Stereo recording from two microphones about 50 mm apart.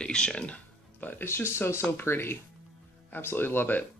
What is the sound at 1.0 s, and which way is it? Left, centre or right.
Speech, left.